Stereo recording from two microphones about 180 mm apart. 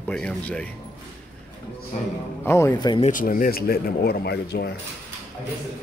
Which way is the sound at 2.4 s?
15° left (ahead or behind).